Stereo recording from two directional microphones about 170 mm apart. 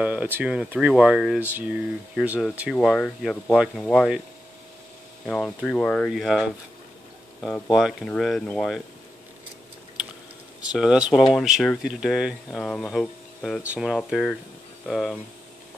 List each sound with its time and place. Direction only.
0.0 s speech: 10° right (ahead or behind)
5.2 s speech: 5° left (ahead or behind)
7.7 s speech: centre (ahead or behind)
10.7 s speech: 5° right (ahead or behind)
12.4 s speech: 5° left (ahead or behind)